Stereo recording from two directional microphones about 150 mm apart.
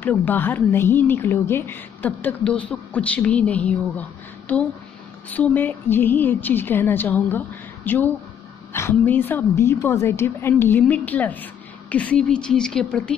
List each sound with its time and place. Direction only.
0.0 s a woman's voice: 10° left (ahead or behind)
5.3 s a woman's voice: 10° left (ahead or behind)